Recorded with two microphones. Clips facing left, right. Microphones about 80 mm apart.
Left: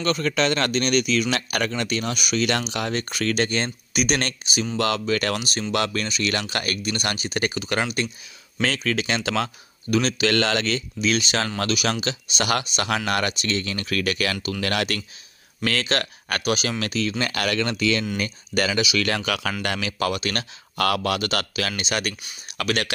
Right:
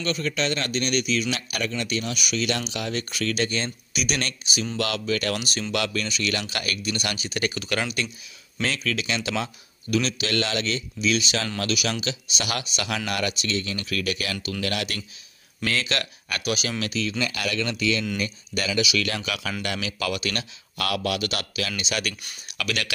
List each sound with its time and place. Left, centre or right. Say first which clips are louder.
0.0 s speech: left 4 dB; left